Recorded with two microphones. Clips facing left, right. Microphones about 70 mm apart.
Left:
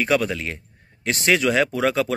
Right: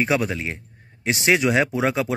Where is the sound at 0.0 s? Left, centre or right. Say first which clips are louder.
Left 1 dB; centre.